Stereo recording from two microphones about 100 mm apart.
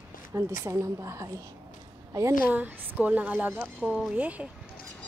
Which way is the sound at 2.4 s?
15° right (ahead or behind).